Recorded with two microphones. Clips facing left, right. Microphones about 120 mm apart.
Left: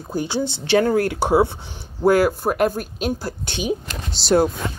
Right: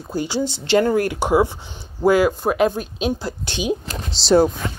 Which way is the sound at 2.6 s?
10° left (ahead or behind).